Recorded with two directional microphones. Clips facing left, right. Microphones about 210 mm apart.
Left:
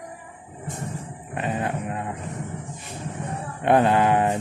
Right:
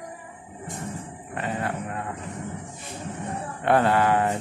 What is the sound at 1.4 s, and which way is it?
Music, 20° left (ahead or behind).